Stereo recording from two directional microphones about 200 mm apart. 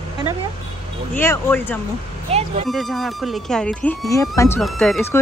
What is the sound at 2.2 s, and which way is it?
Speech, 30° right (ahead or behind).